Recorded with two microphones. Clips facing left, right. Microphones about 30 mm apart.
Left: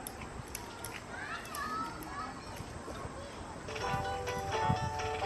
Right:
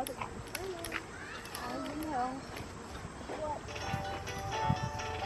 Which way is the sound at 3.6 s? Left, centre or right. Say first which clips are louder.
Left 3 dB; centre.